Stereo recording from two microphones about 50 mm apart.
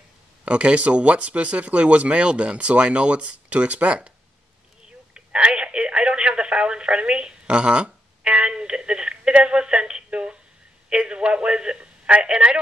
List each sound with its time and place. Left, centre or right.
0.5 s speech: right
5.1 s telephone: centre
10.9 s speech: right